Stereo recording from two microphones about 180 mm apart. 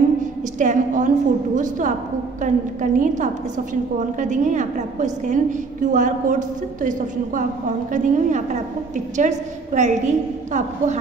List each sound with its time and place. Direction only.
0.2 s a woman's voice: 45° right (ahead or behind)